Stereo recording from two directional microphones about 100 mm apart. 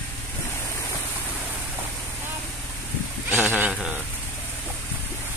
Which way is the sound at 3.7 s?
5° right (ahead or behind).